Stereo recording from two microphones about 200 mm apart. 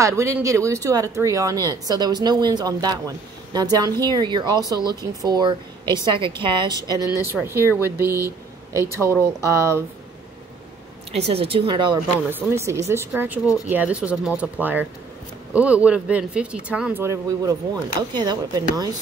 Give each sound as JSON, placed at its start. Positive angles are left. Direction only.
{"t": 0.0, "sound": "speech", "side_deg": -15}
{"t": 11.1, "sound": "speech", "side_deg": -30}
{"t": 12.3, "sound": "speech", "side_deg": -10}